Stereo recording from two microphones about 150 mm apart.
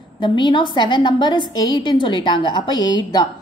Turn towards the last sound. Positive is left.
turn(degrees=30)  # may be behind; listen again after turning